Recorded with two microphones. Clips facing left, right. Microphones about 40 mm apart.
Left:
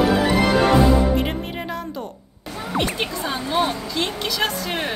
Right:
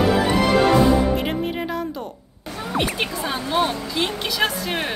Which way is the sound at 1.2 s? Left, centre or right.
Centre.